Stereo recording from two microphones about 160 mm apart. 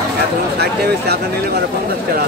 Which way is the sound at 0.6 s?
90° right.